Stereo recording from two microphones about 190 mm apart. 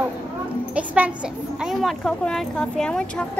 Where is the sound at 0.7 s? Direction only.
10° right (ahead or behind).